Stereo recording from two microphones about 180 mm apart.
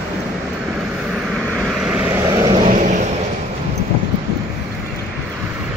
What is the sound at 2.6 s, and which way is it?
Vehicle, 45° right (ahead or behind).